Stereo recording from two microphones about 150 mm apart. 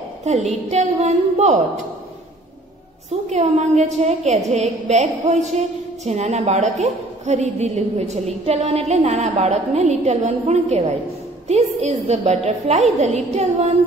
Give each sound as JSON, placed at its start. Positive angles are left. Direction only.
{"t": 0.2, "sound": "a woman's voice", "side_deg": -50}
{"t": 3.3, "sound": "a woman's voice", "side_deg": -50}